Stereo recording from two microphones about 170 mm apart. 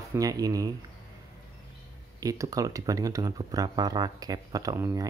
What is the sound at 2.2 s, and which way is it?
Speech, 20° right (ahead or behind).